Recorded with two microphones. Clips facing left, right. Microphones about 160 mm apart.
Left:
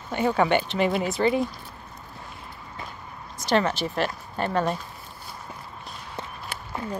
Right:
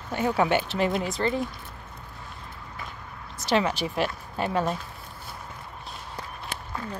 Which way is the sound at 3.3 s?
5° right (ahead or behind).